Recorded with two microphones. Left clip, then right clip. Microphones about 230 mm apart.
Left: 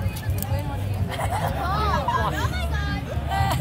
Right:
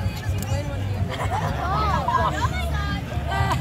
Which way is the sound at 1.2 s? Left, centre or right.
Left.